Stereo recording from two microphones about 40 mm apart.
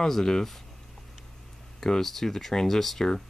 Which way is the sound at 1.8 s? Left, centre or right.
Centre.